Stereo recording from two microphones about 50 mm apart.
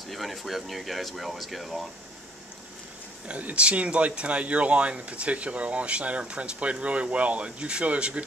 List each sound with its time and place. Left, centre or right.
0.1 s speech: centre
3.3 s speech: right